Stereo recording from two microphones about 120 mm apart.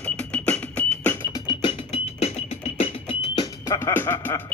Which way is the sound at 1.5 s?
50° left (ahead or behind).